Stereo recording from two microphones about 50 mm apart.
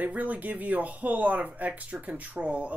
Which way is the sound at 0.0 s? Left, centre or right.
Right.